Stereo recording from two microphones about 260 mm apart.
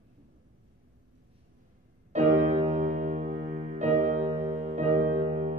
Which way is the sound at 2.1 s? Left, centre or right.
Right.